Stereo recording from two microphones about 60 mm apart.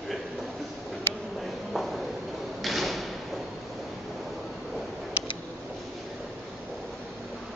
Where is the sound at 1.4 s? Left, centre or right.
Centre.